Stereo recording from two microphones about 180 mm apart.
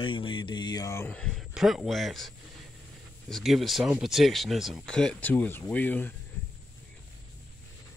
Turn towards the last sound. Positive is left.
turn(degrees=10)  # may be behind; listen again after turning